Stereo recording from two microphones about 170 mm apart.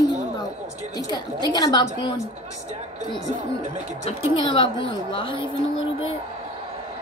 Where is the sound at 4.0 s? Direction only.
35° left (ahead or behind).